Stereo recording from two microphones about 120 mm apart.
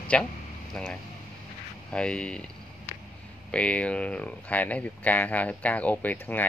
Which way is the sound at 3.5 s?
10° left (ahead or behind).